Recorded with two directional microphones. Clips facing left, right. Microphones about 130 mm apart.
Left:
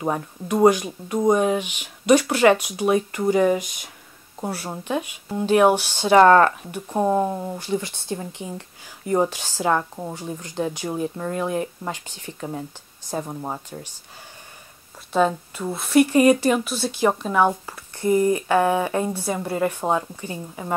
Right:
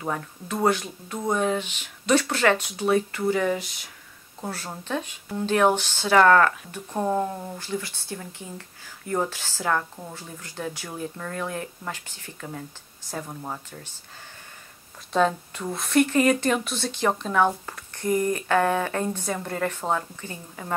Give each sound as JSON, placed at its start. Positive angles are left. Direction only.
{"t": 0.0, "sound": "a woman's voice", "side_deg": 20}
{"t": 6.7, "sound": "speech", "side_deg": 15}
{"t": 15.1, "sound": "a woman's voice", "side_deg": 5}